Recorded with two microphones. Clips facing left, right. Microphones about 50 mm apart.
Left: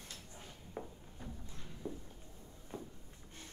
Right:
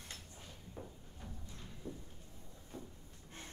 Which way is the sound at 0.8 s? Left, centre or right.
Left.